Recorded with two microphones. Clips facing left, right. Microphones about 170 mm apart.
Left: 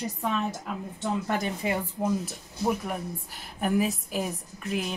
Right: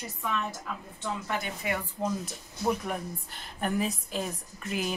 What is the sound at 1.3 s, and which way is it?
Speech, 40° left (ahead or behind).